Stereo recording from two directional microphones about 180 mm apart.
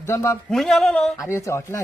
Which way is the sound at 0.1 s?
15° left (ahead or behind).